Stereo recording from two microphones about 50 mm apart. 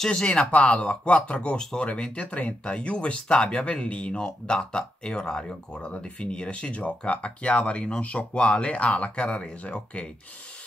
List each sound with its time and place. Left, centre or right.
0.0 s speech: centre